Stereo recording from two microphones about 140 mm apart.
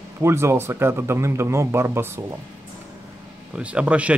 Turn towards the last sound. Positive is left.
turn(degrees=-10)  # may be behind; listen again after turning